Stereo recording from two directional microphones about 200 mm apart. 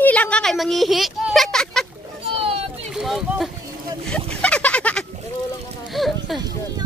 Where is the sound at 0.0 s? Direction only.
5° left (ahead or behind).